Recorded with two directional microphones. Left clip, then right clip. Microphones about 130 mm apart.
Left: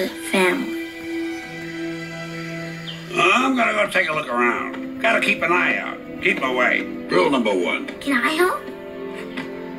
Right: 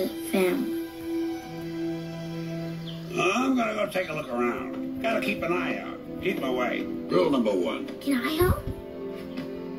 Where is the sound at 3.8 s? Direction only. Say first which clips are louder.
Left 9 dB; 10° right (ahead or behind).